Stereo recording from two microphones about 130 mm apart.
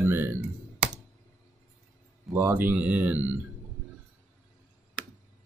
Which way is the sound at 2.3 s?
15° right (ahead or behind).